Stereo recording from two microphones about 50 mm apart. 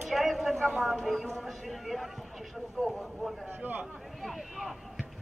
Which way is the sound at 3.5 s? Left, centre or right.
Right.